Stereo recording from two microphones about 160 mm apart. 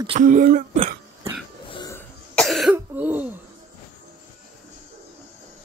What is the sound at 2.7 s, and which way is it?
Throat clearing, 10° right (ahead or behind).